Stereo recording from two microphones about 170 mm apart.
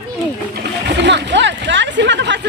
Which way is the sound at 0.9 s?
90° right.